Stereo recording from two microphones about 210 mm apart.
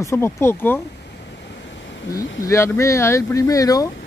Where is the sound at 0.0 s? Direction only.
10° left (ahead or behind).